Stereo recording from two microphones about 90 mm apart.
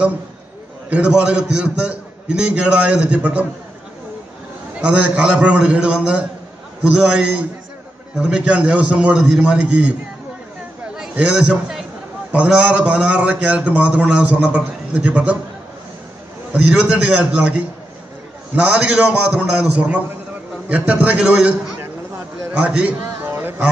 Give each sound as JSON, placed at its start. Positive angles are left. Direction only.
{"t": 0.8, "sound": "a man's voice", "side_deg": -10}
{"t": 4.8, "sound": "a man's voice", "side_deg": -10}
{"t": 11.1, "sound": "a man's voice", "side_deg": -10}
{"t": 16.5, "sound": "a man's voice", "side_deg": -15}
{"t": 23.2, "sound": "a sound", "side_deg": -25}